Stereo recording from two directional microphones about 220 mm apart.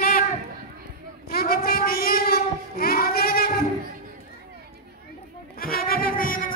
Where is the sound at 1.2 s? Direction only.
45° left (ahead or behind).